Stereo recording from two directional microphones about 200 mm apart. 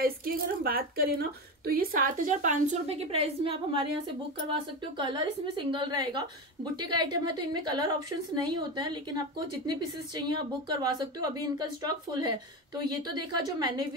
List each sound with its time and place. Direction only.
0.0 s a woman's voice: 45° right (ahead or behind); by 13.7 s 20° right (ahead or behind)